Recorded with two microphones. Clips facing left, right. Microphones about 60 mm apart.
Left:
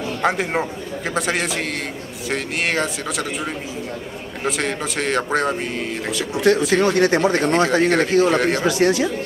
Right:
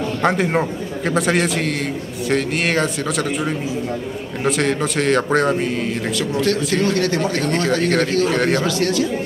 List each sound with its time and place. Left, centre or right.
0.0 s a man's voice: centre
6.1 s speech: centre
6.9 s speech: left
8.3 s speech: centre
8.6 s speech: left